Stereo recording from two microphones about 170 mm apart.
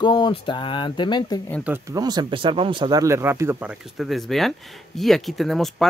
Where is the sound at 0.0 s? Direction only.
25° left (ahead or behind).